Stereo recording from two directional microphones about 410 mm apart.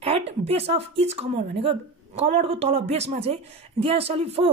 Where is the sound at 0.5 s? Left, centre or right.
Centre.